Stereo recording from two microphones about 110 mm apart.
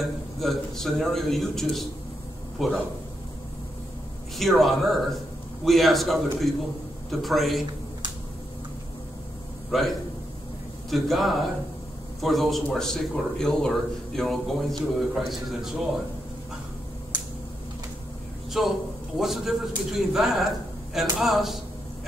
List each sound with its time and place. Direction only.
0.0 s a man's voice: centre (ahead or behind)
4.4 s a man's voice: centre (ahead or behind)
9.7 s a man's voice: centre (ahead or behind)
17.1 s a sound: 40° right (ahead or behind)
18.6 s a man's voice: centre (ahead or behind)